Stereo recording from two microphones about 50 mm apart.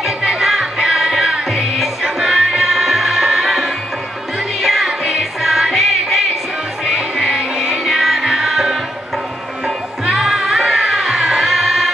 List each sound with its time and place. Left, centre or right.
0.0 s music: centre
10.0 s music: centre